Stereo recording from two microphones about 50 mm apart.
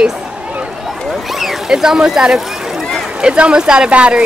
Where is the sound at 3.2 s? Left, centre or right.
Centre.